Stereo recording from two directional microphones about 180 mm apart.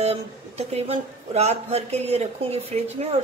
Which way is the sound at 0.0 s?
35° right (ahead or behind).